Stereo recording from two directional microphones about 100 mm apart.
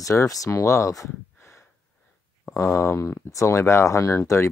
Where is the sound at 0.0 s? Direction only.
35° left (ahead or behind).